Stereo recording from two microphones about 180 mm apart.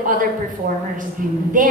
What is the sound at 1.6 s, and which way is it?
Speech, 45° right (ahead or behind).